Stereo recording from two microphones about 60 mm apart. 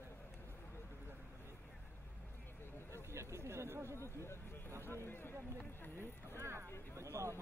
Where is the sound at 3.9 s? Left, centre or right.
Left.